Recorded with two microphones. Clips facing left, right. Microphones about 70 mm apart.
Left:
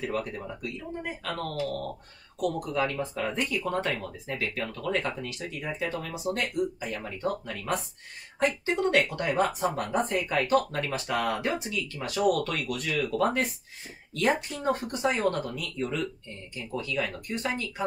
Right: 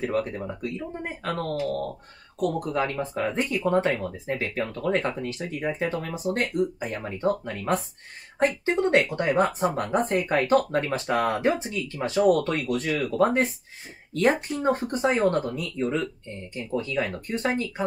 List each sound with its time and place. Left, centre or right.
0.0 s speech: right